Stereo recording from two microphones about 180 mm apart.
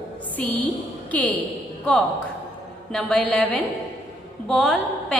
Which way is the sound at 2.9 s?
5° left (ahead or behind).